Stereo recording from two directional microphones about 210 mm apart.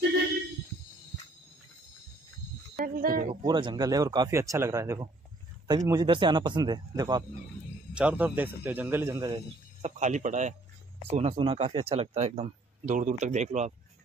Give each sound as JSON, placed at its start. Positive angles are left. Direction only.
{"t": 2.8, "sound": "a man's voice", "side_deg": -40}
{"t": 3.4, "sound": "speech", "side_deg": -20}
{"t": 7.9, "sound": "speech", "side_deg": -5}
{"t": 9.2, "sound": "a man's voice", "side_deg": -25}